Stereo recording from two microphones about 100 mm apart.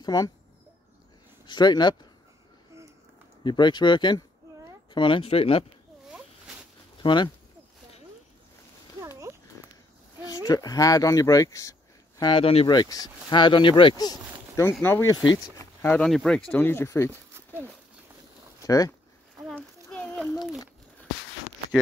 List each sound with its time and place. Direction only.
0.0 s speech: 40° left (ahead or behind)
1.4 s speech: 45° left (ahead or behind)
3.4 s speech: 50° left (ahead or behind); by 5.7 s 70° left (ahead or behind)
7.0 s speech: 55° left (ahead or behind)
9.3 s a sound: 25° right (ahead or behind)
10.2 s speech: 40° left (ahead or behind)
12.2 s speech: 60° left (ahead or behind)
12.6 s speech: 40° left (ahead or behind)
14.6 s speech: 20° left (ahead or behind)
16.0 s speech: 5° left (ahead or behind)
16.5 s speech: 20° left (ahead or behind)
18.6 s speech: 35° left (ahead or behind)
19.5 s a sound: 10° left (ahead or behind)